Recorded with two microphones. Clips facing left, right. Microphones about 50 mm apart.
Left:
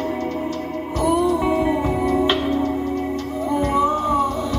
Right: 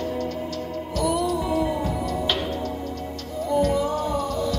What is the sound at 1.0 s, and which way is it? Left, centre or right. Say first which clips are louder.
Music: left 5 dB; left.